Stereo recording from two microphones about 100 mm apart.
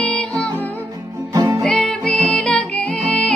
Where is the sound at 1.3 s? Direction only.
35° right (ahead or behind).